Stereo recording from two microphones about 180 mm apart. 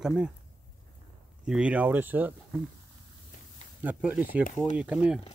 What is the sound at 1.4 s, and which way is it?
Speech, 5° right (ahead or behind).